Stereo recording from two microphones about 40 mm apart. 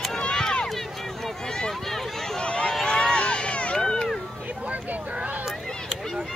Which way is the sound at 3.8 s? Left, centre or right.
Centre.